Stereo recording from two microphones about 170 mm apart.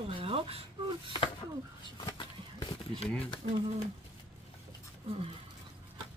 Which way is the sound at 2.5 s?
25° left (ahead or behind).